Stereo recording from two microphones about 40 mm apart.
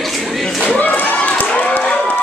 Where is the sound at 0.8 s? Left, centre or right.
Left.